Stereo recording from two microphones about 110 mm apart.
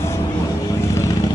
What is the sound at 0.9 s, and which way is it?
Vehicle, 30° left (ahead or behind).